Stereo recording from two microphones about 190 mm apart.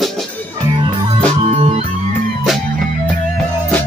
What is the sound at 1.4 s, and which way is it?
Music, 35° right (ahead or behind).